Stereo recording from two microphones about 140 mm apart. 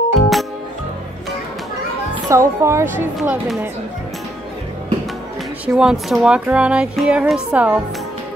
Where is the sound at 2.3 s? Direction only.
20° right (ahead or behind).